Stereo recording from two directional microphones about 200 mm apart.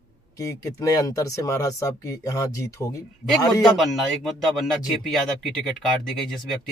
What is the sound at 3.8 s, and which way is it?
Speech, centre (ahead or behind).